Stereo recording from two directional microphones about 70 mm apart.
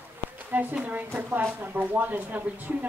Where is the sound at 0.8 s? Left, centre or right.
Right.